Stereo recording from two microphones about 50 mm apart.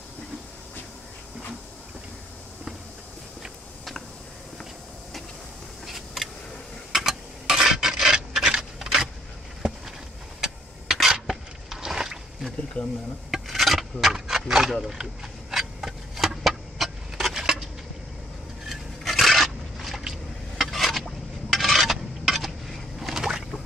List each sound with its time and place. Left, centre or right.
5.9 s a sound: centre
6.9 s filing: centre
9.6 s a sound: centre
10.4 s clock: centre
11.1 s a sound: centre
12.8 s speech: left
13.3 s filing: centre
14.1 s speech: centre
15.5 s vehicle: centre
18.7 s scrape: centre
20.0 s a sound: centre
20.6 s vehicle: centre
21.5 s dishes: centre